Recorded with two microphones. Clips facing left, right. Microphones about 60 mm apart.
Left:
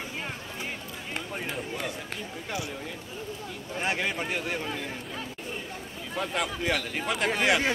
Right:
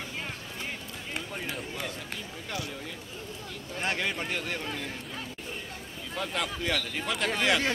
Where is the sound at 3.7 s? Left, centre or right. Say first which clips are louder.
Left 2 dB; centre.